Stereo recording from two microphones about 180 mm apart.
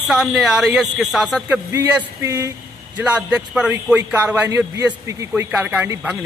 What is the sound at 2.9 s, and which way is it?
Speech, 5° right (ahead or behind).